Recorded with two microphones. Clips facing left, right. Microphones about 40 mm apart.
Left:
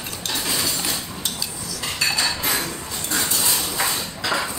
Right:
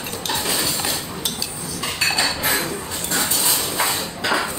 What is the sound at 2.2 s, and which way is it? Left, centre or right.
Cutlery, centre.